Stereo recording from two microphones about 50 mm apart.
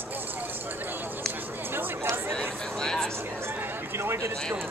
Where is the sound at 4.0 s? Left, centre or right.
Right.